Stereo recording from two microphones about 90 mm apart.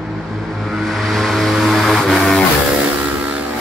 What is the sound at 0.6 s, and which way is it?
Vehicle, centre (ahead or behind).